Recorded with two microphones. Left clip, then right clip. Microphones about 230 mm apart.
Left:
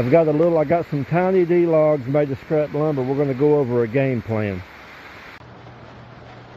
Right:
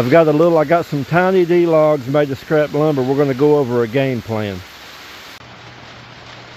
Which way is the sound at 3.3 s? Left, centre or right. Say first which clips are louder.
Right 1 dB; right.